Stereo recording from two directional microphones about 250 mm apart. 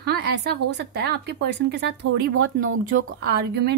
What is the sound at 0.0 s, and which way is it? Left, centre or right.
Speech, right.